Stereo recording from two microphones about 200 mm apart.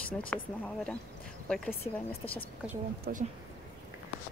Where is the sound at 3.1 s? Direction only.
50° right (ahead or behind).